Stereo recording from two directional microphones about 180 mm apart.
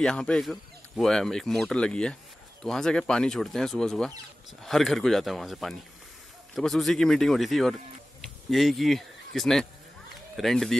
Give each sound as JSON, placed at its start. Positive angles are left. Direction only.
{"t": 0.0, "sound": "speech", "side_deg": 5}